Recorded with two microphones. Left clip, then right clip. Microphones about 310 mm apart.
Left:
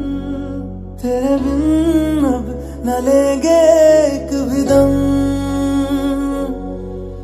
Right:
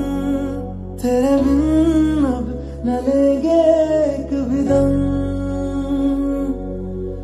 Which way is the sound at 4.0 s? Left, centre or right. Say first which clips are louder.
Left 4 dB; left.